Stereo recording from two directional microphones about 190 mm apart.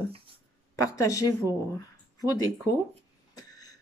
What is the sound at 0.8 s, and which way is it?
Speech, 15° left (ahead or behind).